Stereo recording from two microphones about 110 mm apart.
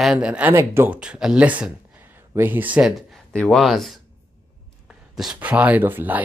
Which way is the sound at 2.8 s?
Centre (ahead or behind).